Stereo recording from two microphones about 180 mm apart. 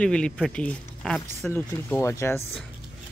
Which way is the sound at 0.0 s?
5° left (ahead or behind).